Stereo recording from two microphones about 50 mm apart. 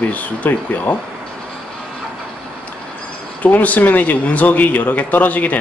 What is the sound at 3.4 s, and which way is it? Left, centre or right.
Speech, left.